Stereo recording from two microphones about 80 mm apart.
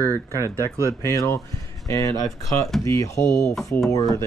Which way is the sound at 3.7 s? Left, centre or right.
Left.